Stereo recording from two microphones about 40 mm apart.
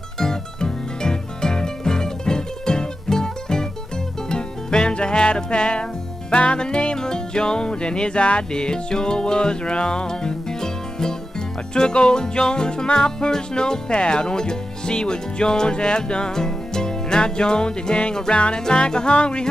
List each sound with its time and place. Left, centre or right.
0.2 s music: centre